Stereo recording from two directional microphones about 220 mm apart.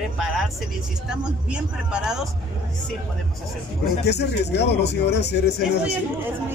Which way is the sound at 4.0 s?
50° left (ahead or behind).